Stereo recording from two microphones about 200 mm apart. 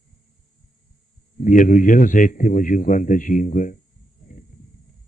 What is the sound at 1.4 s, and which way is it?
Speech, 40° left (ahead or behind).